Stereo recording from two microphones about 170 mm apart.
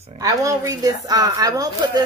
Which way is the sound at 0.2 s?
20° right (ahead or behind).